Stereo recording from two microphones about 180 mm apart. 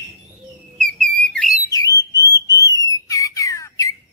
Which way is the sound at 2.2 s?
20° left (ahead or behind).